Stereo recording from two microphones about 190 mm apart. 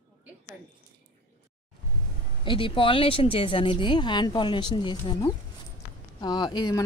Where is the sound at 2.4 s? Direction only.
25° left (ahead or behind).